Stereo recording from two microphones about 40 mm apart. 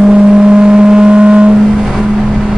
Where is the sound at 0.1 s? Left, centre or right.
Right.